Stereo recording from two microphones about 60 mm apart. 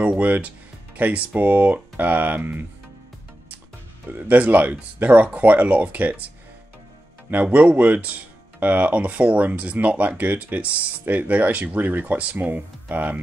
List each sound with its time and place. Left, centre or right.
0.0 s speech: right
4.1 s speech: right